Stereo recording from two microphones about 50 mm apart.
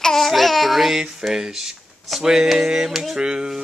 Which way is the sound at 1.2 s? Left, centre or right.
Centre.